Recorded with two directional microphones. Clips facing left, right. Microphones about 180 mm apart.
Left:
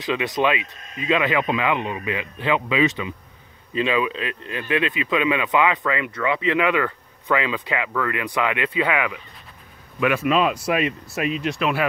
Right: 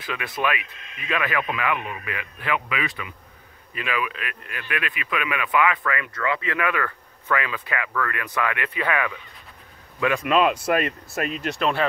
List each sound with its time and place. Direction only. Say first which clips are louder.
0.0 s speech: left 6 dB; 20° left (ahead or behind)
0.7 s speech: left 3 dB; 40° left (ahead or behind)
0.9 s speech: left 5 dB; 20° left (ahead or behind)
10.2 s speech: even; centre (ahead or behind)